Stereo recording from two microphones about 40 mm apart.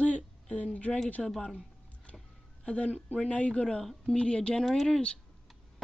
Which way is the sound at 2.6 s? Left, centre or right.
Left.